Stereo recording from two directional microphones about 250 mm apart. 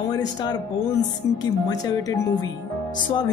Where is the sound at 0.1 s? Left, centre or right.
Centre.